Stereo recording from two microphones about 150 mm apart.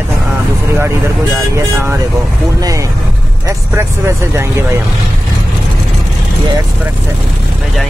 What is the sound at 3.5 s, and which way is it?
Speech, 20° right (ahead or behind).